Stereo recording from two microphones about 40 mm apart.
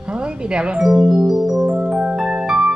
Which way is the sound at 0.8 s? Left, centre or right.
Centre.